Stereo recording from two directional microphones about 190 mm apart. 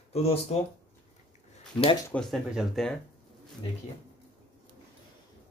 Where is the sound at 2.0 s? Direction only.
5° left (ahead or behind).